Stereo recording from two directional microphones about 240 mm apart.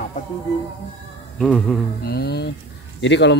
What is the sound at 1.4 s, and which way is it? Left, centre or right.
Speech, centre.